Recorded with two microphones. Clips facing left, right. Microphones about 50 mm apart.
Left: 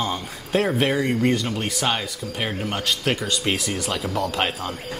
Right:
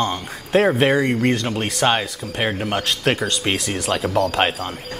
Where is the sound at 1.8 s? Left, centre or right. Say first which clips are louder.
Right 6 dB; right.